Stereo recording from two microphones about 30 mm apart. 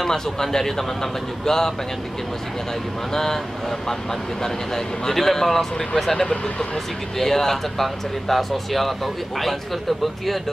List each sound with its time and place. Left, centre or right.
0.0 s speech: centre
3.1 s speech: centre
6.2 s speech: left
7.2 s speech: centre